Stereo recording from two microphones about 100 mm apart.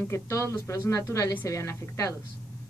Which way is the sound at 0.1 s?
30° left (ahead or behind).